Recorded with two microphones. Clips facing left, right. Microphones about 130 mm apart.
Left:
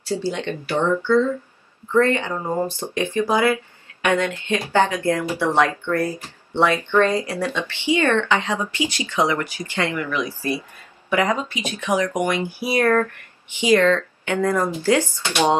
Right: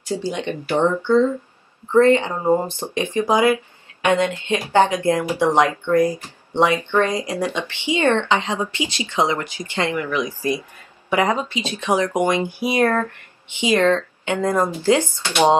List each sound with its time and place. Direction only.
0.0 s speech: 15° right (ahead or behind)